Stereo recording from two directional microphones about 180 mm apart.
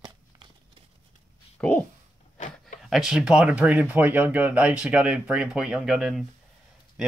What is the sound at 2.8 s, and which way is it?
Speech, centre (ahead or behind).